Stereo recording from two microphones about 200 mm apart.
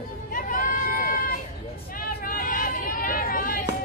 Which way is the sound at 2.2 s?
45° left (ahead or behind).